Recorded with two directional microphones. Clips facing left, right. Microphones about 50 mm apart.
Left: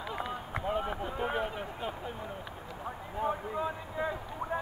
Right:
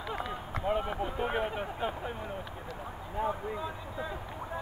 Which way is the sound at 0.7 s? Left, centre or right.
Centre.